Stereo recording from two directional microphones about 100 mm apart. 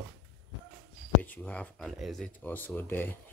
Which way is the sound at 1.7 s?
Centre (ahead or behind).